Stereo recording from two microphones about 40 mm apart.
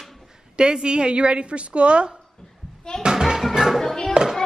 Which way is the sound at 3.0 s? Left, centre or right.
Centre.